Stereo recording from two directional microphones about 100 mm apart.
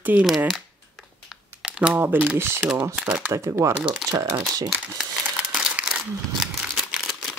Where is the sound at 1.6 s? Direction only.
10° right (ahead or behind).